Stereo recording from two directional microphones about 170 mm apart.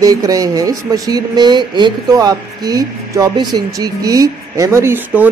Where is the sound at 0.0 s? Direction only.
20° right (ahead or behind).